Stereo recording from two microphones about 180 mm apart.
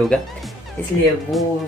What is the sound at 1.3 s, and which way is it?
Speech, centre (ahead or behind).